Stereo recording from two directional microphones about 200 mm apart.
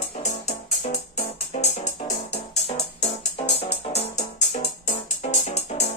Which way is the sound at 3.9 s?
30° left (ahead or behind).